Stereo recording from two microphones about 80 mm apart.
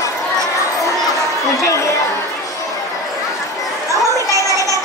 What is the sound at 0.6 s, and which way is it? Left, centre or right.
Crowd, left.